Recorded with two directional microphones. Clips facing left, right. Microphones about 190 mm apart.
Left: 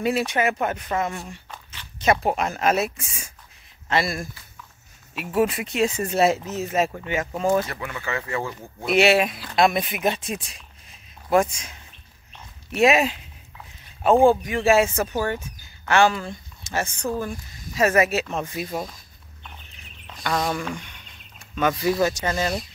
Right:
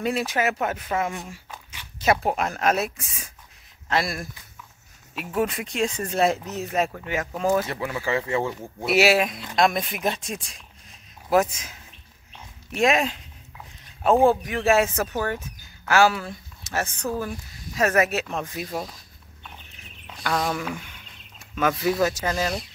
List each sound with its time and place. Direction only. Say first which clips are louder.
0.0 s speech: left 2 dB; centre (ahead or behind)
7.6 s speech: right 4 dB; 25° right (ahead or behind)
8.8 s speech: left 1 dB; 5° right (ahead or behind)
20.1 s a sound: left 1 dB; centre (ahead or behind)
21.5 s speech: left 1 dB; centre (ahead or behind)